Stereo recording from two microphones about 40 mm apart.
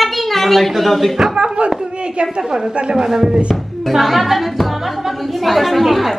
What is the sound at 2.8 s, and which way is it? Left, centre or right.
Speech, right.